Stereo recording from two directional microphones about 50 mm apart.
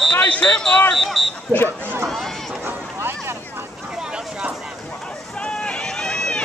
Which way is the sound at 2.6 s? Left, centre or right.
Right.